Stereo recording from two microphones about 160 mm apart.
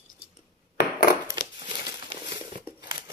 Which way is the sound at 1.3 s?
30° right (ahead or behind).